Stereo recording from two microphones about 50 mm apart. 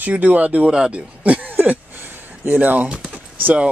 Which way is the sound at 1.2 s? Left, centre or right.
Right.